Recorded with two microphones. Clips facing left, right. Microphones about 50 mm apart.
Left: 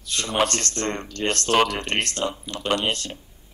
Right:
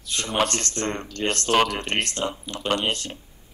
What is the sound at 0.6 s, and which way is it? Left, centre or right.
Speech, right.